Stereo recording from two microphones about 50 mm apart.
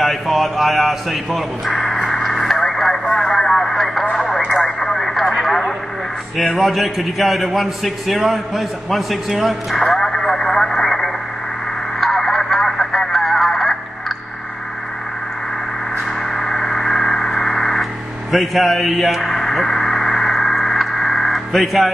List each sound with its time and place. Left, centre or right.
0.0 s speech: centre
2.0 s radio: centre
2.2 s radio: centre
4.0 s radio: centre
6.6 s a man's voice: centre
12.0 s radio: centre
16.3 s vehicle: centre
18.3 s a sound: centre